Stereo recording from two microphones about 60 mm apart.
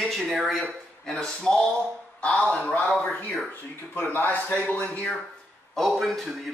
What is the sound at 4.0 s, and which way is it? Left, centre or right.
A man's voice, left.